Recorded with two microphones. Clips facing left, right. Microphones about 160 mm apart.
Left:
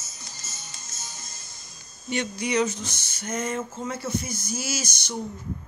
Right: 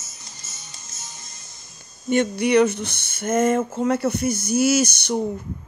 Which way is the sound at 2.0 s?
55° right (ahead or behind).